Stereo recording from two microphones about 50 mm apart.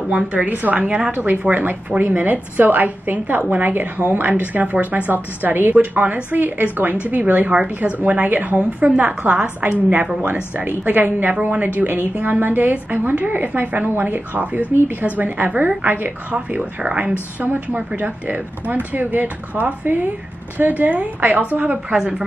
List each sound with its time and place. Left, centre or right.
0.5 s a woman's voice: right
1.1 s a woman's voice: right
10.9 s a woman's voice: right
16.3 s a woman's voice: right